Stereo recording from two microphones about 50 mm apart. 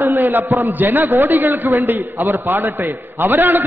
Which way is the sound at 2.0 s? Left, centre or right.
Right.